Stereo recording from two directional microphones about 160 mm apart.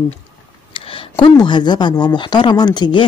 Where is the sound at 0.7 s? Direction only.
35° left (ahead or behind).